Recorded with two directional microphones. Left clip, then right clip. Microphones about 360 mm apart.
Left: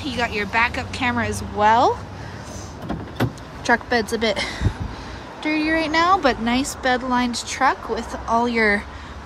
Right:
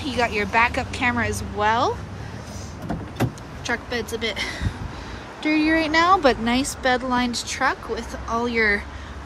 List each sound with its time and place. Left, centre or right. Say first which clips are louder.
0.0 s a woman's voice: right 1 dB; centre
3.2 s a woman's voice: left 3 dB; left